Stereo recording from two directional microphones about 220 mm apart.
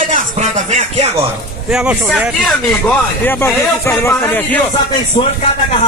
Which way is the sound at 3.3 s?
10° left (ahead or behind).